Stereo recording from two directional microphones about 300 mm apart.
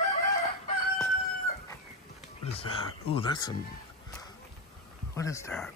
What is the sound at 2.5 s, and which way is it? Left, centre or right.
Speech, centre.